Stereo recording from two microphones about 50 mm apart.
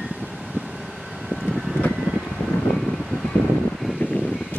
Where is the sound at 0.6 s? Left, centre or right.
Right.